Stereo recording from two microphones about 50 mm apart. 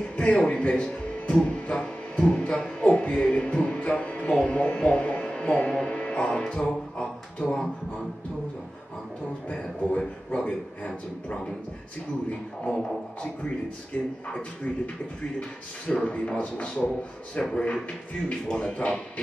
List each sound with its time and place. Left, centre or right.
0.2 s music: left
9.5 s a sound: left
13.9 s speech: left
15.9 s speech: left
18.7 s speech: left